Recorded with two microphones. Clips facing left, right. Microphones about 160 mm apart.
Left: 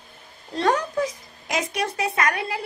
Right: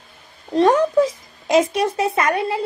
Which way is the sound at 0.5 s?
25° right (ahead or behind).